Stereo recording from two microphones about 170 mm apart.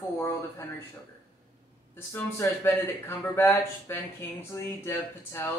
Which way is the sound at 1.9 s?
15° left (ahead or behind).